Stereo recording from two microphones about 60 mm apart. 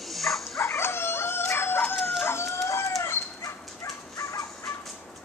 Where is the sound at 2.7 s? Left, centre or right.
Left.